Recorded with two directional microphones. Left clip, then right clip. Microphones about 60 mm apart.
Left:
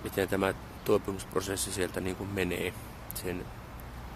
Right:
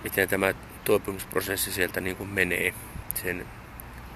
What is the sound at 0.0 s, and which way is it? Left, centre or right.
Speech, centre.